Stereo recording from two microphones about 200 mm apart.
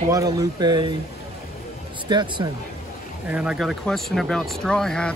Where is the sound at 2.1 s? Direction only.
20° right (ahead or behind).